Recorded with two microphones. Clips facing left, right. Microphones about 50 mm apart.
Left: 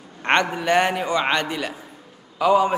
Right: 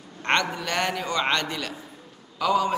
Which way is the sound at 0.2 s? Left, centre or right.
Left.